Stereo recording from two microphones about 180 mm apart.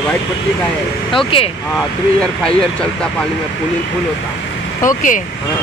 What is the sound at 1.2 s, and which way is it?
Speech, 30° left (ahead or behind).